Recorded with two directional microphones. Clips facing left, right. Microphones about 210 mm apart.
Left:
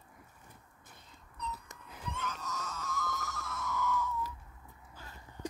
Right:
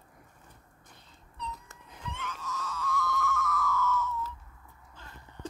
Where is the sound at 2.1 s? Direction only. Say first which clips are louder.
Right 1 dB; 40° left (ahead or behind); by 4.3 s 15° left (ahead or behind).